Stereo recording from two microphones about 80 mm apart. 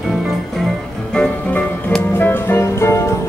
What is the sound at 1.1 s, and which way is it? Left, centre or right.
Music, centre.